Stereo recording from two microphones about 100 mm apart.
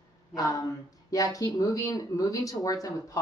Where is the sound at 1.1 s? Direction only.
35° left (ahead or behind).